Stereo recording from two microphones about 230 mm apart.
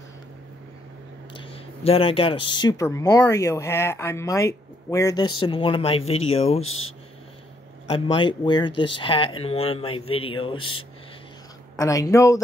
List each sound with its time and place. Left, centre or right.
1.3 s speech: left
7.9 s speech: left